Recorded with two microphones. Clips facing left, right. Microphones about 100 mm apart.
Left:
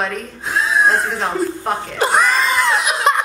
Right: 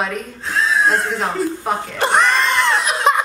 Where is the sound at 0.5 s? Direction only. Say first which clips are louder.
Left 1 dB; 15° left (ahead or behind).